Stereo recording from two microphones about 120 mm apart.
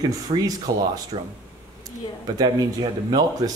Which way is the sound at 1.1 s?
50° right (ahead or behind).